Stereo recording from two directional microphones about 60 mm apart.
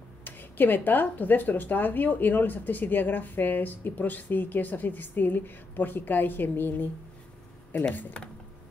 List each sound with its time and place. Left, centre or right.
0.2 s speech: left
7.9 s speech: left